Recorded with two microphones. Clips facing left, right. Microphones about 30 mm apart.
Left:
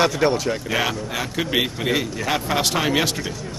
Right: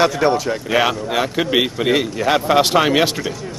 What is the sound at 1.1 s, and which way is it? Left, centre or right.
Speech, right.